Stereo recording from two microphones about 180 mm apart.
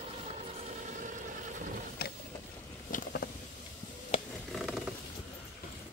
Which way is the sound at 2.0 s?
60° left (ahead or behind).